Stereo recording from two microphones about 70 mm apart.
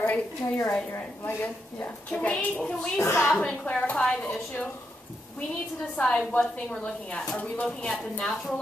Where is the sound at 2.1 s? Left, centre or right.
Centre.